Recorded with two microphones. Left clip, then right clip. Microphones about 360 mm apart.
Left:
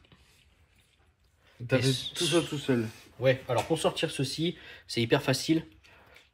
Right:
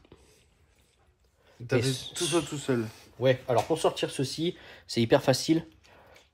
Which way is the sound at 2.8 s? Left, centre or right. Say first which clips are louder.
Right 1 dB; right.